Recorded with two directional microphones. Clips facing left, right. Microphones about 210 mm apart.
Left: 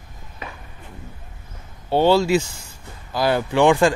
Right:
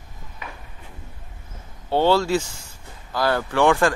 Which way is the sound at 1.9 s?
15° left (ahead or behind).